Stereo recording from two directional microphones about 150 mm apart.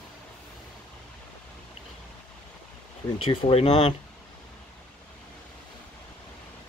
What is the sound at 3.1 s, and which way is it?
Speech, 35° left (ahead or behind).